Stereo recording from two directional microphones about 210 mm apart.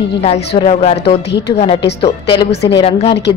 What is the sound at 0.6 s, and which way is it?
Speech, 30° left (ahead or behind).